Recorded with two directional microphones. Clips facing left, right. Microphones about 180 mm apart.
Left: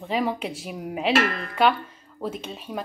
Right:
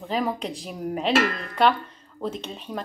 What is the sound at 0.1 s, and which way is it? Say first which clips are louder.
Speech: left 1 dB; 5° left (ahead or behind).